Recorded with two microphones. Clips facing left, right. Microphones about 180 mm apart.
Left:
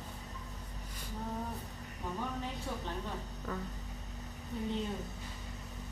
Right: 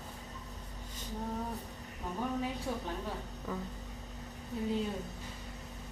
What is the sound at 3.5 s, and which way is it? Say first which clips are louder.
Speech: right 1 dB; 10° right (ahead or behind).